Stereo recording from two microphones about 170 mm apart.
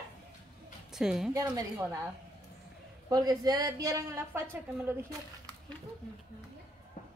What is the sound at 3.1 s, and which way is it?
A woman's voice, 20° right (ahead or behind).